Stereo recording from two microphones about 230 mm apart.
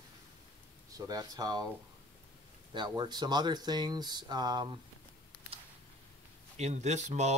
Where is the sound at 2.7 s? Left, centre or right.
Centre.